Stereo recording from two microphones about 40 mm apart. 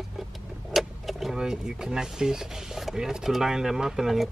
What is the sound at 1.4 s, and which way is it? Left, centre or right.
Speech, centre.